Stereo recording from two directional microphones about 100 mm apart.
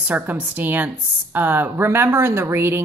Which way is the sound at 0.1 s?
20° right (ahead or behind).